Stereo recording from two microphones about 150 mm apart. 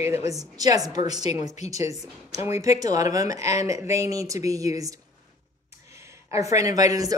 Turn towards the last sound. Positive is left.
turn(degrees=-25)  # may be behind; listen again after turning